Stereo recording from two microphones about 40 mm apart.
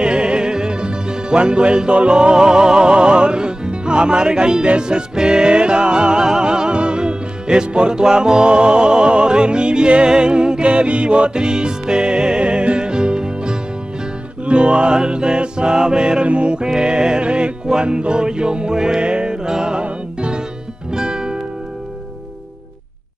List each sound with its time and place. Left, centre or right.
0.0 s music: right